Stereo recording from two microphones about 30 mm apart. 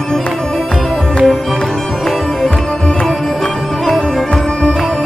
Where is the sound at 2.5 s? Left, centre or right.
Left.